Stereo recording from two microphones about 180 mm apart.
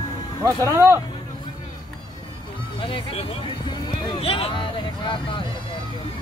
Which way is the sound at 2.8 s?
30° left (ahead or behind).